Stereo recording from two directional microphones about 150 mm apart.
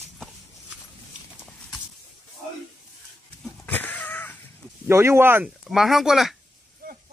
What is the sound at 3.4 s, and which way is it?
Goat, 10° left (ahead or behind).